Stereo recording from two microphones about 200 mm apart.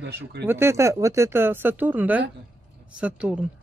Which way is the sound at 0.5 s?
10° right (ahead or behind).